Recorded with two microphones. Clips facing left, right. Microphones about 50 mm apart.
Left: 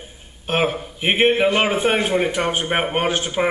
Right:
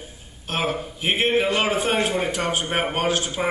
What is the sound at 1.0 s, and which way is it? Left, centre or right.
A man's voice, left.